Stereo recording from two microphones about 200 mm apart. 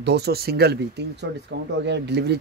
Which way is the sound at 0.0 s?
55° right (ahead or behind).